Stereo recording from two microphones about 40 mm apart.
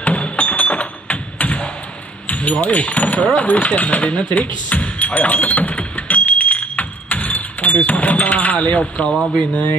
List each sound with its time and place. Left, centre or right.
0.0 s music: left
2.2 s speech: left
9.1 s speech: centre